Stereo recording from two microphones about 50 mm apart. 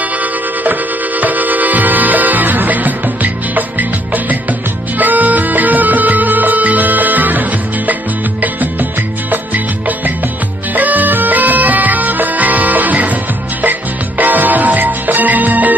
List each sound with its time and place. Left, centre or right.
1.2 s music: right